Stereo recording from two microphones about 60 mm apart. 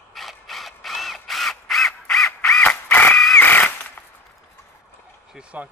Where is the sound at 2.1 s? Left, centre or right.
Centre.